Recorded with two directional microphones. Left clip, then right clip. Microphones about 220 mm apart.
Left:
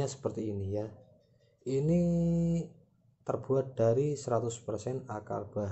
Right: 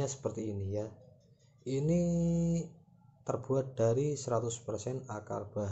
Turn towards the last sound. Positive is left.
turn(degrees=10)  # may be behind; listen again after turning